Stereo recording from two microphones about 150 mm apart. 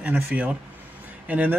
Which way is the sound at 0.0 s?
10° right (ahead or behind).